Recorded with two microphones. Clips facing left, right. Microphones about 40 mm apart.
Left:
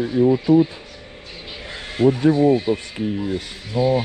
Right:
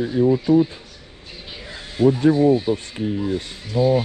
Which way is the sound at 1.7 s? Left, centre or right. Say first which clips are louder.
Even; left.